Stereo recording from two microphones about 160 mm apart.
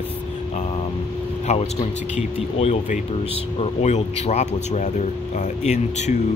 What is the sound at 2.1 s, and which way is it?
A man's voice, 40° left (ahead or behind).